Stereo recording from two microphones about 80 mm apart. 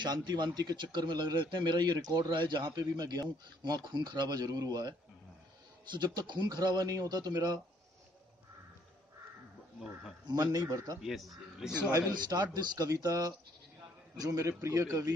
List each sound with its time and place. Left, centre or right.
0.0 s a man's voice: right
2.3 s speech: right
10.3 s speech: right
11.0 s speech: centre
12.1 s a man's voice: right
12.7 s speech: right